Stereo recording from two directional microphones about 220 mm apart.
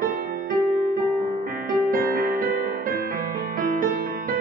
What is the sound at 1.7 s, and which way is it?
Music, 40° right (ahead or behind).